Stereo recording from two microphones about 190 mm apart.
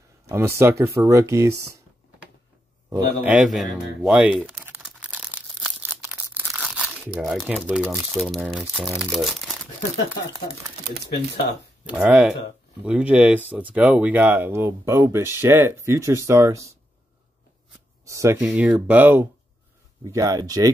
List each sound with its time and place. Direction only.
0.3 s speech: 15° right (ahead or behind)
2.9 s speech: 5° right (ahead or behind)
4.6 s crumpling: 10° right (ahead or behind)
7.6 s speech: 10° right (ahead or behind)
11.8 s speech: 5° right (ahead or behind)
18.0 s speech: 15° right (ahead or behind)
18.4 s speech: 5° right (ahead or behind)